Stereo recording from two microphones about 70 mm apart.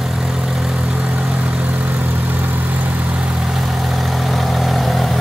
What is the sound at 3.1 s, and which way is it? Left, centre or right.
Vehicle, centre.